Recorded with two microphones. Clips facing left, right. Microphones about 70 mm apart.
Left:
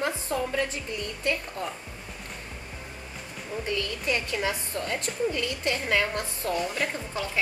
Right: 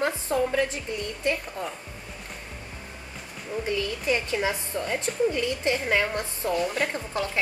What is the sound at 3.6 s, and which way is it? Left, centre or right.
A woman's voice, centre.